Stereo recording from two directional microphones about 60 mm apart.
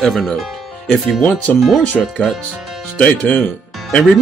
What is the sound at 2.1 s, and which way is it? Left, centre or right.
Speech, centre.